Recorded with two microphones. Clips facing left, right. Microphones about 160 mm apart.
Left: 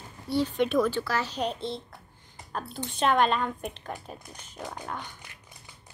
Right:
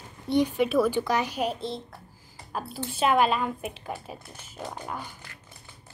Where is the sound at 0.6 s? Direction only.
5° right (ahead or behind).